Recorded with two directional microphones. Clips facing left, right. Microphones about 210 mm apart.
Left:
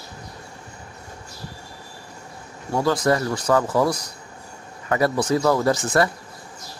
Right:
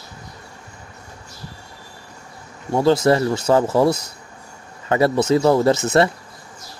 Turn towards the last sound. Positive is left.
turn(degrees=-25)  # may be behind; listen again after turning